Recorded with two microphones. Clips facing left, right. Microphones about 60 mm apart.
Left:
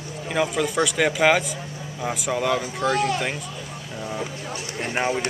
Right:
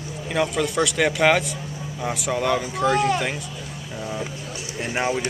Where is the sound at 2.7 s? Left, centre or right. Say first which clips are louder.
Right 4 dB; centre.